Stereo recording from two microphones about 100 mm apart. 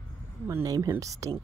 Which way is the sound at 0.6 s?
35° right (ahead or behind).